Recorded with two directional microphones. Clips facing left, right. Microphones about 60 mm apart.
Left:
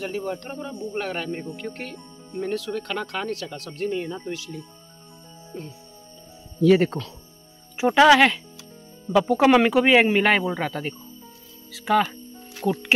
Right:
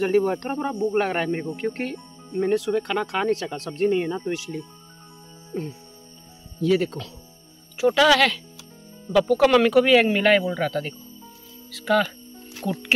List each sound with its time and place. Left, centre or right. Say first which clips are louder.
0.0 s speech: right 8 dB; right
2.3 s speech: right 6 dB; right
3.3 s speech: right 6 dB; right
5.5 s speech: right 6 dB; right
6.7 s speech: left 3 dB; left
7.7 s speech: left 2 dB; left